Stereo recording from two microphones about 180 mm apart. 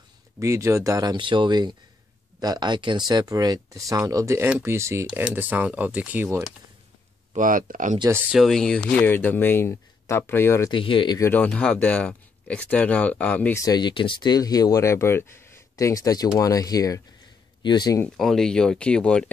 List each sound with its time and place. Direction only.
0.4 s speech: 15° right (ahead or behind)
7.3 s speech: 50° right (ahead or behind)
8.3 s speech: centre (ahead or behind)
10.7 s speech: 30° left (ahead or behind)
11.2 s speech: 10° left (ahead or behind)
18.0 s speech: centre (ahead or behind)